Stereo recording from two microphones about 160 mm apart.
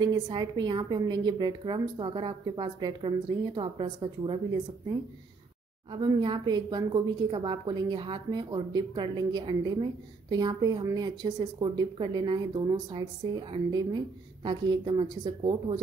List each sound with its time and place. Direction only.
0.0 s speech: 30° right (ahead or behind)
5.9 s speech: 30° right (ahead or behind)